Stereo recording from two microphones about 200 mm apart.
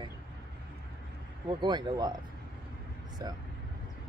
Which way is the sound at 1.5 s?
20° right (ahead or behind).